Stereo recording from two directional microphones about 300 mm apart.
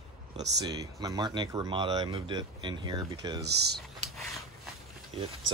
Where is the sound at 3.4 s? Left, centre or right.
Right.